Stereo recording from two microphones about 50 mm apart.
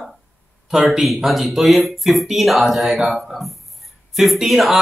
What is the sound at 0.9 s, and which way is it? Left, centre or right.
A man's voice, centre.